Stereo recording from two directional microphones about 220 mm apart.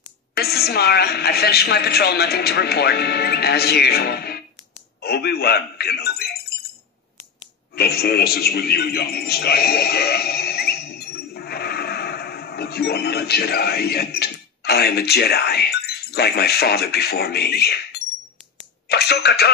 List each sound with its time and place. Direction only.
0.3 s a woman's voice: 45° left (ahead or behind)
7.7 s a man's voice: 45° left (ahead or behind)